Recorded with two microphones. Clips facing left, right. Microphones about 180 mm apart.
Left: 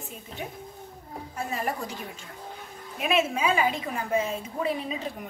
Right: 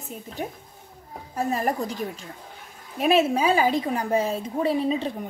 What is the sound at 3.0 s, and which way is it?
A woman's voice, 35° right (ahead or behind).